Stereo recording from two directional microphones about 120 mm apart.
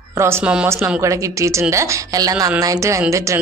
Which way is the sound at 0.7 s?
25° right (ahead or behind).